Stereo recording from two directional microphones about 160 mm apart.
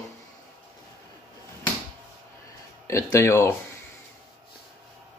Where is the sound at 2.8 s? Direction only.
20° left (ahead or behind).